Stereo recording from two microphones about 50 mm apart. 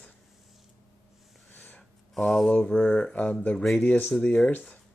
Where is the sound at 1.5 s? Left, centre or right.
Left.